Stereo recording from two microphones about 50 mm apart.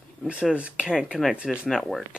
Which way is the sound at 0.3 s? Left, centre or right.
Centre.